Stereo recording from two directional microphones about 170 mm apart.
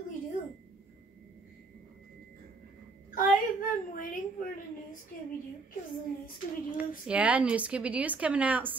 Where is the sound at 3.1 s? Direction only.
55° left (ahead or behind).